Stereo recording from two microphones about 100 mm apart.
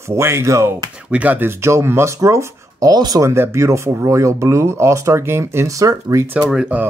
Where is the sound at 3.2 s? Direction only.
25° right (ahead or behind).